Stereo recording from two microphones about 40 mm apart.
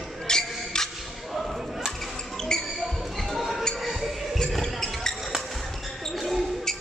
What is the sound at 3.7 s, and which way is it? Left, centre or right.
Music, centre.